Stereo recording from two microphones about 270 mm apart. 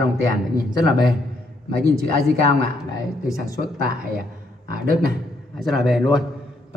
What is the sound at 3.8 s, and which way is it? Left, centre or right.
A man's voice, right.